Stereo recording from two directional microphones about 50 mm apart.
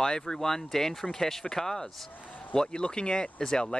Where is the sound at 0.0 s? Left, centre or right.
Centre.